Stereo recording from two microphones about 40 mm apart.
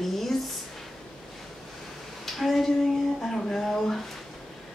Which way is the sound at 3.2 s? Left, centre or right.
Centre.